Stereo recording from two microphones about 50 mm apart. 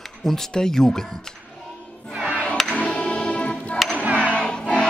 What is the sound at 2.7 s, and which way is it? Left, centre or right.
Music, left.